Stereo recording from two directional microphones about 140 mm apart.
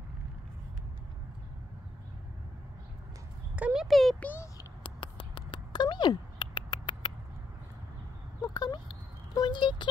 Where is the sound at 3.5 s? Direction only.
5° right (ahead or behind); by 4.4 s 10° left (ahead or behind).